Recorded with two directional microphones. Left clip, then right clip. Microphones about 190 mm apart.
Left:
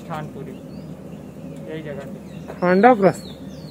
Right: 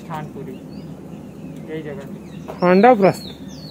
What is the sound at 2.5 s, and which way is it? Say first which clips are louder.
Speech: right 2 dB; 35° right (ahead or behind).